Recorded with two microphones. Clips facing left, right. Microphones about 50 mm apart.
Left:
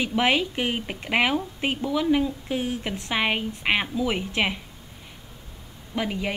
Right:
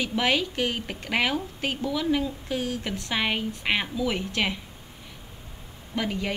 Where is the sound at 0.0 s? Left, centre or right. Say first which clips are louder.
Left 2 dB; left.